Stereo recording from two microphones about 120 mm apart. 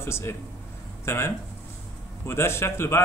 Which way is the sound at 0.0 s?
20° left (ahead or behind).